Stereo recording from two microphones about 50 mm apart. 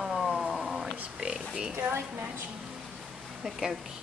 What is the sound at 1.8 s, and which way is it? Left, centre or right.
Speech, right.